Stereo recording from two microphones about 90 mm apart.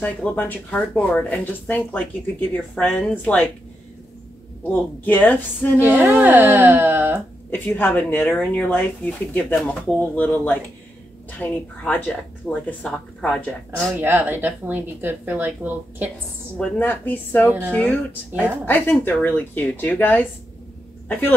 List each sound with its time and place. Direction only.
0.0 s speech: 20° left (ahead or behind)
4.6 s speech: 20° left (ahead or behind)
5.8 s speech: 20° right (ahead or behind)
7.5 s speech: 20° left (ahead or behind)
13.9 s speech: 20° right (ahead or behind)
16.5 s speech: 20° left (ahead or behind)
17.5 s a woman's voice: 20° right (ahead or behind)
17.7 s speech: 15° left (ahead or behind)